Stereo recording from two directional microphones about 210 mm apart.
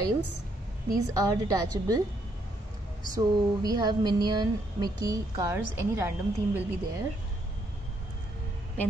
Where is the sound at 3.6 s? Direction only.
20° right (ahead or behind).